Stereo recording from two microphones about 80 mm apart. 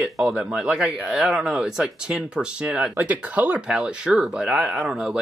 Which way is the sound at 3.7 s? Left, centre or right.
Centre.